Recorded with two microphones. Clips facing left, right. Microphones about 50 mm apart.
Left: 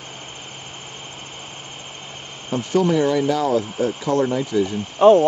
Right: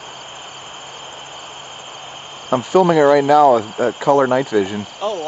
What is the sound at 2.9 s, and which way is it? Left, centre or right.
Speech, right.